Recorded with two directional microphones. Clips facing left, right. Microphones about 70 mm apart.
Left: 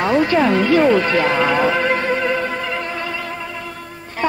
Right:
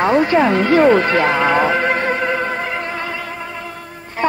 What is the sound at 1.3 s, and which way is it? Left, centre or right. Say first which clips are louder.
Speech: right 2 dB; right.